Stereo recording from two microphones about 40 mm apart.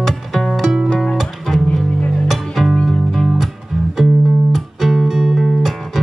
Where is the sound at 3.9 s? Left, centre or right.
Centre.